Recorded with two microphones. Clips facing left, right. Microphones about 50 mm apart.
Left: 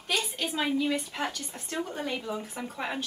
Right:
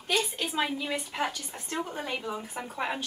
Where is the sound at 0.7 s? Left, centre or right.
Centre.